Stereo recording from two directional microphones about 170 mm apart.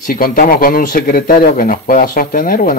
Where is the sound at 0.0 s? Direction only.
55° left (ahead or behind).